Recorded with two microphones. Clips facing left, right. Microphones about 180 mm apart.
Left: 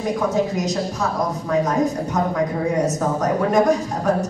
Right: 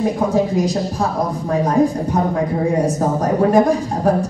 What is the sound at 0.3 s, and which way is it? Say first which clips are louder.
Speech: right 4 dB; 30° right (ahead or behind).